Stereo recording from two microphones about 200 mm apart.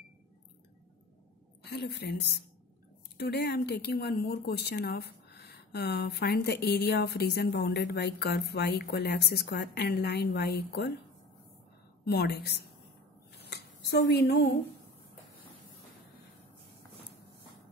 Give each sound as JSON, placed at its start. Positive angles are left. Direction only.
{"t": 1.6, "sound": "a woman's voice", "side_deg": 55}
{"t": 12.0, "sound": "a woman's voice", "side_deg": 55}
{"t": 13.4, "sound": "a sound", "side_deg": 55}